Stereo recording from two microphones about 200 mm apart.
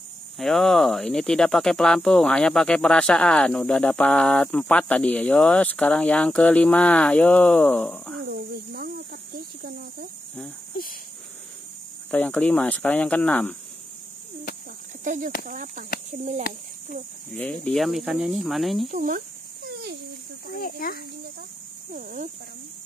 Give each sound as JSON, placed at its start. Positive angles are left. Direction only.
{"t": 0.4, "sound": "speech", "side_deg": 0}
{"t": 8.3, "sound": "cricket", "side_deg": -50}
{"t": 12.1, "sound": "speech", "side_deg": 5}
{"t": 15.0, "sound": "speech", "side_deg": -40}
{"t": 17.3, "sound": "speech", "side_deg": 5}
{"t": 18.9, "sound": "a sound", "side_deg": -40}
{"t": 20.5, "sound": "speech", "side_deg": 45}
{"t": 21.9, "sound": "speech", "side_deg": -40}